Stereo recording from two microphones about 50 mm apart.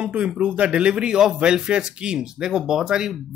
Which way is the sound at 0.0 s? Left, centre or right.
Right.